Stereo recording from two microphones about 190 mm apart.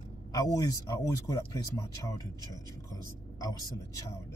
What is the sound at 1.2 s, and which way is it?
A man's voice, 20° left (ahead or behind).